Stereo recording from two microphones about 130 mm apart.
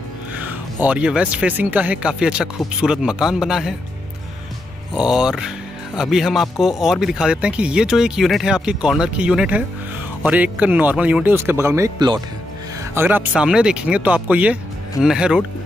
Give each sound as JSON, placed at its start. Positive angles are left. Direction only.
{"t": 0.8, "sound": "speech", "side_deg": -10}
{"t": 4.9, "sound": "speech", "side_deg": -5}
{"t": 12.9, "sound": "speech", "side_deg": -15}